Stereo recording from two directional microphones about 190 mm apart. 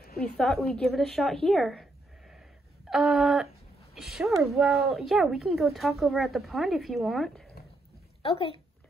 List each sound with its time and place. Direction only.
0.4 s a woman's voice: centre (ahead or behind)
8.2 s speech: 30° left (ahead or behind)